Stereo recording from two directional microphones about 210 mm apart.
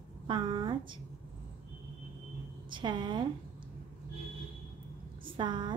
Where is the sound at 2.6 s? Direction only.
20° right (ahead or behind).